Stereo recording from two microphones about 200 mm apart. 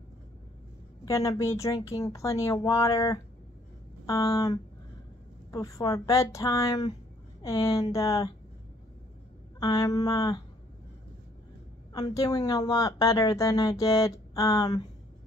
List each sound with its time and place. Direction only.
1.0 s a woman's voice: 15° left (ahead or behind)
9.6 s a woman's voice: 20° left (ahead or behind)
11.9 s a woman's voice: 15° left (ahead or behind)